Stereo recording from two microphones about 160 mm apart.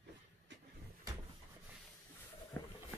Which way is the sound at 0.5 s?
90° right.